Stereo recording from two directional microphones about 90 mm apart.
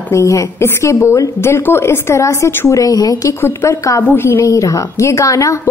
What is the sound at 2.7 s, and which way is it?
Speech, 45° left (ahead or behind).